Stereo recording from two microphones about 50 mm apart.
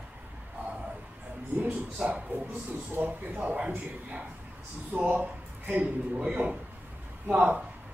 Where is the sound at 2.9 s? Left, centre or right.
Right.